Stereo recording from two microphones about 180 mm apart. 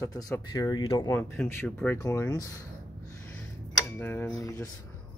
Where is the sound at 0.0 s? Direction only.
20° left (ahead or behind).